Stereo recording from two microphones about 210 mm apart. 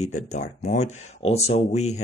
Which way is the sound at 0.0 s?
35° left (ahead or behind).